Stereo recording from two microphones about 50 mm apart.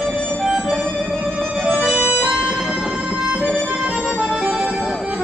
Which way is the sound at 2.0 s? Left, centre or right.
Right.